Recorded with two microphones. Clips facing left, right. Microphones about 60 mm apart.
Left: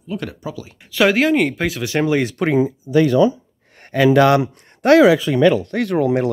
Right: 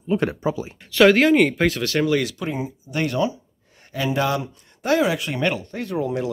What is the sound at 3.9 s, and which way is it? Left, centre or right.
Speech, left.